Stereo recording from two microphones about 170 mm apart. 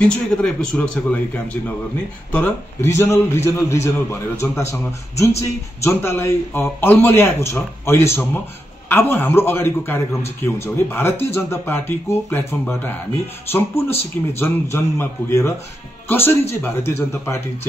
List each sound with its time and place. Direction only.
0.0 s a man's voice: 5° left (ahead or behind)